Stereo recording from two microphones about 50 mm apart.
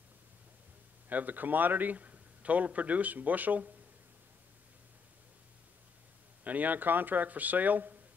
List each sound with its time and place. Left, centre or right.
1.0 s a man's voice: right
6.4 s a man's voice: right